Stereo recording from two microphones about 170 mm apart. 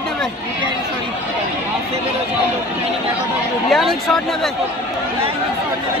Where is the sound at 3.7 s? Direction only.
Centre (ahead or behind).